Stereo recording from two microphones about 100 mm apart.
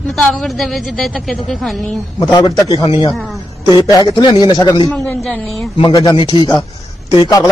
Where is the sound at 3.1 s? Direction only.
Centre (ahead or behind).